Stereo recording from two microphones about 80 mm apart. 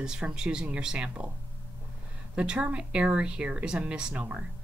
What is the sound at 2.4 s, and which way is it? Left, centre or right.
Speech, centre.